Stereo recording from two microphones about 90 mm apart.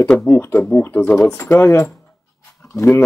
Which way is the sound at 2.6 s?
35° left (ahead or behind).